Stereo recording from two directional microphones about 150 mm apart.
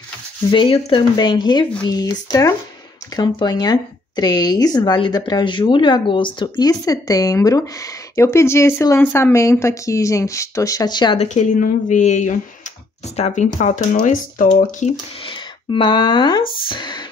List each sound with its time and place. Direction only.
0.5 s speech: 35° left (ahead or behind)
11.1 s speech: 55° left (ahead or behind)
15.7 s speech: 30° left (ahead or behind)